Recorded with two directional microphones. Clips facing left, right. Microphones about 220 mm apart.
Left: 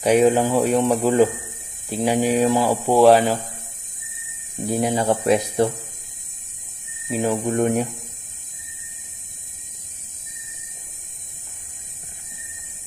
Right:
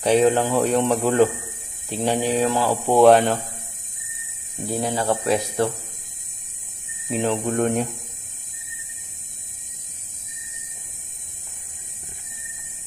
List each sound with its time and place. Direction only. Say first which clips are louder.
0.0 s speech: left 2 dB; 10° left (ahead or behind)
2.9 s speech: even; centre (ahead or behind)
4.6 s speech: left 3 dB; 15° left (ahead or behind)
7.1 s speech: left 1 dB; 5° left (ahead or behind)